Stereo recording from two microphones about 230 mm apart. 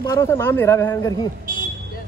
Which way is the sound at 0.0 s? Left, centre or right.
Centre.